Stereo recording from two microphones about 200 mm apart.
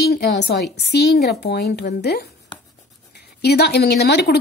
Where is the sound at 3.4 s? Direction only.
55° left (ahead or behind).